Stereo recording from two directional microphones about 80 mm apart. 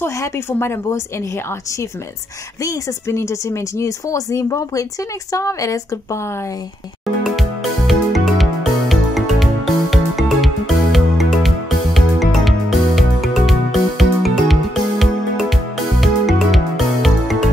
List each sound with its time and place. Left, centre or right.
0.0 s speech: left
2.6 s speech: left
7.2 s music: centre